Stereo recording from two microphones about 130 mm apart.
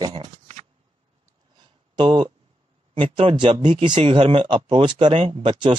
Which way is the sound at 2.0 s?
40° right (ahead or behind).